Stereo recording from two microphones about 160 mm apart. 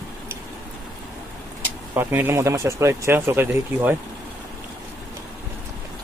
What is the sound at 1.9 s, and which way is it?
Speech, 15° right (ahead or behind).